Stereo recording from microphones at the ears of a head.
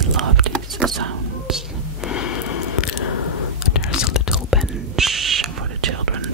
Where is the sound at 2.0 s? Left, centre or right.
Left.